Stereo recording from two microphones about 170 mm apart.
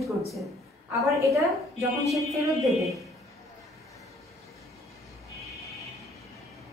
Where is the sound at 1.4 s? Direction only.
Centre (ahead or behind).